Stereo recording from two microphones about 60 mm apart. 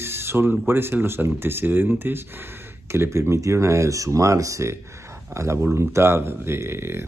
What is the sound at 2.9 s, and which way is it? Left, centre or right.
Speech, right.